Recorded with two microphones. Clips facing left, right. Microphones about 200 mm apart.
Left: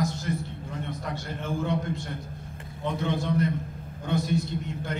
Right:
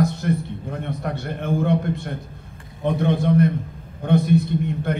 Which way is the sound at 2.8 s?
55° right (ahead or behind).